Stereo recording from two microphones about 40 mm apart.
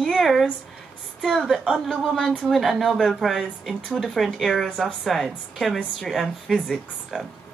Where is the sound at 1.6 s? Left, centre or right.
Centre.